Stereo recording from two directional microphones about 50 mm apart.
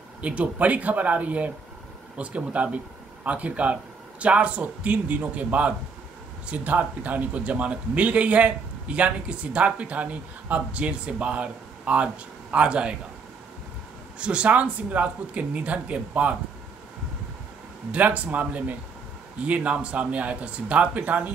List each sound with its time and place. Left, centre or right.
0.2 s speech: right
14.1 s speech: right
17.9 s speech: right